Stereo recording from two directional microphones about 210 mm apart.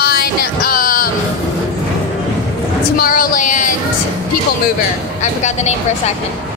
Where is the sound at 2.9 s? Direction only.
45° left (ahead or behind).